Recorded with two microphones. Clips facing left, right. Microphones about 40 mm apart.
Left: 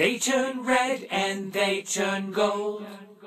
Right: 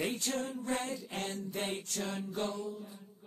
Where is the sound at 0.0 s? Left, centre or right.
Left.